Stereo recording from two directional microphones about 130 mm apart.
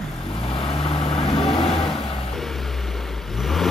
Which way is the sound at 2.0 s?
45° left (ahead or behind).